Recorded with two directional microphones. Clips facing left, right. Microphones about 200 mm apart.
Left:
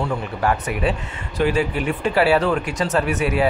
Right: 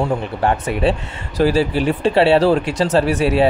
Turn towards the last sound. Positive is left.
turn(degrees=-30)  # may be behind; listen again after turning